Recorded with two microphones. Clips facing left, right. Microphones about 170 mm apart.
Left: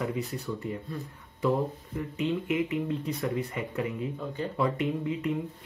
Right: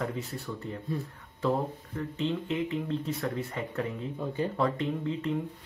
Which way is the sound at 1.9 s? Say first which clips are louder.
Left 1 dB; 10° left (ahead or behind).